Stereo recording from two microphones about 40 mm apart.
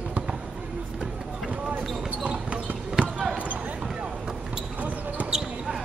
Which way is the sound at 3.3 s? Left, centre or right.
Right.